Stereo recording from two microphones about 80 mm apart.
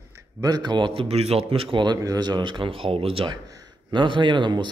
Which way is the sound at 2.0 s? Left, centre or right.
Right.